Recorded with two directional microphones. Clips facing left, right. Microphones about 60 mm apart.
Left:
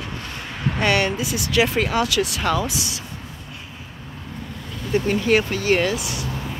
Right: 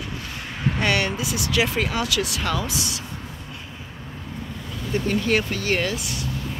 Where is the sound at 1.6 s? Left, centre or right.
Left.